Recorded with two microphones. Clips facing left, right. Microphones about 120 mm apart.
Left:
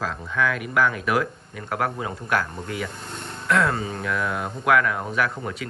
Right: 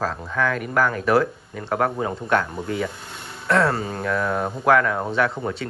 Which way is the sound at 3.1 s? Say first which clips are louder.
Left 2 dB; 5° right (ahead or behind).